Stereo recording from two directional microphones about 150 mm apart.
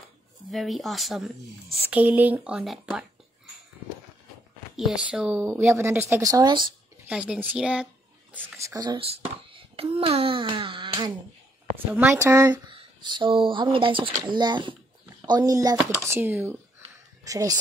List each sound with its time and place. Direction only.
0.5 s speech: centre (ahead or behind)
4.7 s speech: 5° right (ahead or behind)
5.4 s speech: 15° right (ahead or behind)
7.1 s speech: 10° right (ahead or behind)
8.4 s speech: 20° right (ahead or behind)
9.0 s a child's voice: 40° right (ahead or behind)
11.7 s speech: 10° right (ahead or behind)
12.6 s speech: 30° right (ahead or behind)